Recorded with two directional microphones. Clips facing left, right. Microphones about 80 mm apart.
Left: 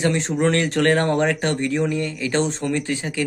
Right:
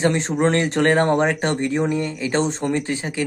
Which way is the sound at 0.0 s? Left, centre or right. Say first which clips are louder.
Right 1 dB; right.